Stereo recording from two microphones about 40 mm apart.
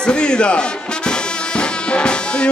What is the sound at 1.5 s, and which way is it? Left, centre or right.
Music, left.